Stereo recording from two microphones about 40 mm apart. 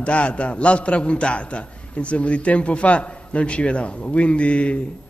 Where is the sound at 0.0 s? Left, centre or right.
Left.